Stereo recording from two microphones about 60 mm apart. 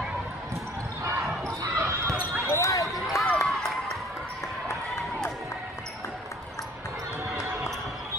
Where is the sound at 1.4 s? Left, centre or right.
Right.